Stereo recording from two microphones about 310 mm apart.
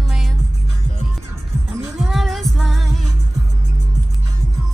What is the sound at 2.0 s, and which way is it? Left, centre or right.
Music, centre.